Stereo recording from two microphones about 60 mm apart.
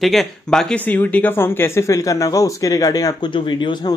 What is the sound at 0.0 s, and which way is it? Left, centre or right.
Speech, centre.